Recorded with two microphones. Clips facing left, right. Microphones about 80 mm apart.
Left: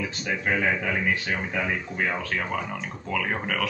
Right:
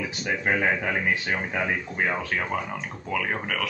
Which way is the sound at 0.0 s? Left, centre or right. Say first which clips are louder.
Right 1 dB; centre.